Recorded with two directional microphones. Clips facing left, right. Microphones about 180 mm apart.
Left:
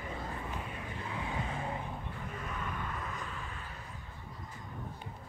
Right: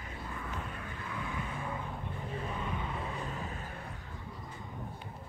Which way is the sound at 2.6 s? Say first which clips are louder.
Right 2 dB; 10° right (ahead or behind).